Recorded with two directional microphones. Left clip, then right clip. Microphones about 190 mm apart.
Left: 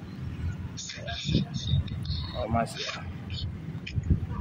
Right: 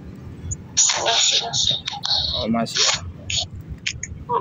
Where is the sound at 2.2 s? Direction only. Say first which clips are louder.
Right 7 dB; 15° right (ahead or behind).